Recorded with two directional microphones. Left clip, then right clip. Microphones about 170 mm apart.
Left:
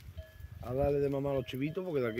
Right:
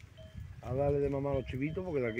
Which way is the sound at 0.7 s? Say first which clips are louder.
Left 1 dB; 15° left (ahead or behind).